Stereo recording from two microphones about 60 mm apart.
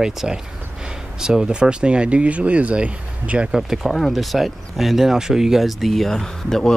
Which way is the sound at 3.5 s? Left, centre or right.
Centre.